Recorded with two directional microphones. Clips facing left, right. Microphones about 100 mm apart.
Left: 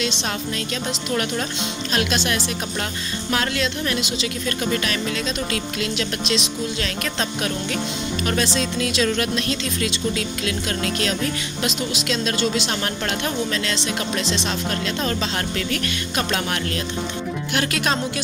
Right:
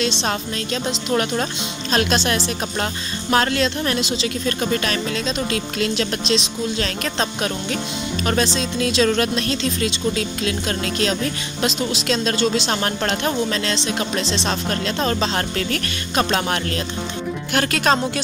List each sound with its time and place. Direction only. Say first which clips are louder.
0.0 s a woman's voice: right 3 dB; 35° right (ahead or behind)
15.5 s speech: right 1 dB; 45° right (ahead or behind)
16.3 s a woman's voice: right 3 dB; 30° right (ahead or behind)
17.5 s a woman's voice: right 5 dB; 45° right (ahead or behind)